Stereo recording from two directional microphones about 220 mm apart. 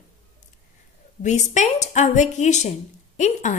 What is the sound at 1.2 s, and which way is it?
Speech, 35° left (ahead or behind).